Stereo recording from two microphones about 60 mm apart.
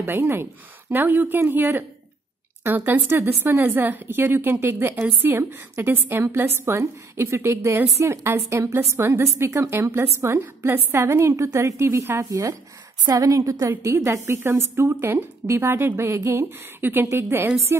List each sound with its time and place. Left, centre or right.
0.0 s a woman's voice: right
13.1 s a woman's voice: right